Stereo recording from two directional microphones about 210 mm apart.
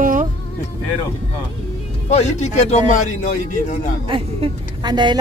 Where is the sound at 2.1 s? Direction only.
30° left (ahead or behind).